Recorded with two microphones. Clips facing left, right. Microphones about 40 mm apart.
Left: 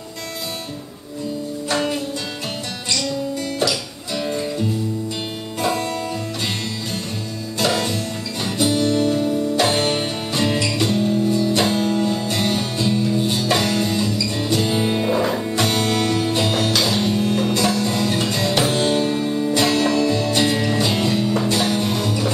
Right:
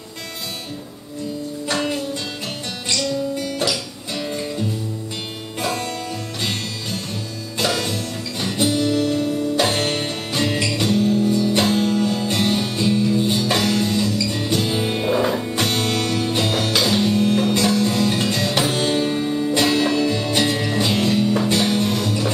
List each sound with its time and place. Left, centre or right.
1.7 s music: centre
3.5 s music: centre
7.6 s music: centre